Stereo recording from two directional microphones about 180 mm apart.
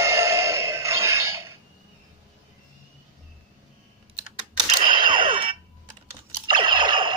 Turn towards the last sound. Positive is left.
turn(degrees=-25)  # may be behind; listen again after turning